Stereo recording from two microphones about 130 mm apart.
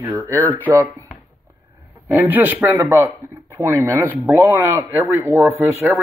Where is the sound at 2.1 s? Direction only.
15° right (ahead or behind).